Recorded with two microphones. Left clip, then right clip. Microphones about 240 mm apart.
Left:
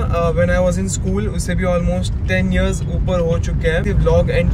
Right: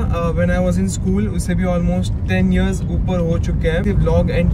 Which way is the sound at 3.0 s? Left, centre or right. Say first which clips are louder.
Left 3 dB; centre.